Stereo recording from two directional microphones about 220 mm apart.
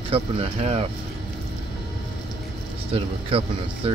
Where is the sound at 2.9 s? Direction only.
25° right (ahead or behind).